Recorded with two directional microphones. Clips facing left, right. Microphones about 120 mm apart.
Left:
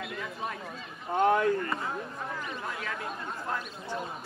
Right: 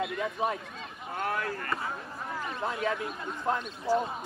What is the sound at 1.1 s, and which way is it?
Speech, 20° left (ahead or behind).